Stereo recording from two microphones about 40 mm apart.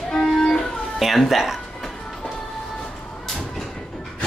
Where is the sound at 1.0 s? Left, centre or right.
Centre.